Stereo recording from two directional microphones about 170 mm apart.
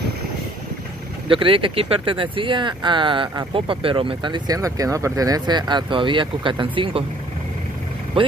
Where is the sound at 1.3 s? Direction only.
30° right (ahead or behind).